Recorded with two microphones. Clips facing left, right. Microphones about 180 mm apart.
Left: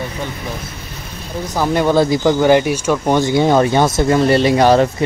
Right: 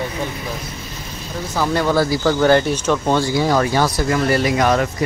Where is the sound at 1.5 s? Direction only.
20° left (ahead or behind).